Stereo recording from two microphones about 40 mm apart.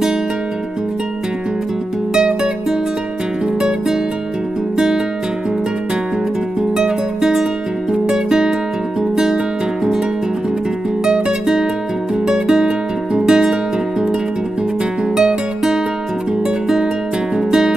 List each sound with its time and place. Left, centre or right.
2.1 s music: centre
4.7 s music: centre
6.8 s music: centre
11.1 s music: centre
15.1 s music: centre
17.5 s music: centre